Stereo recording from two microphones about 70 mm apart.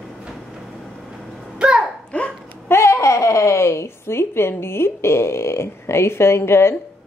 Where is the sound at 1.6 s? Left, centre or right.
Centre.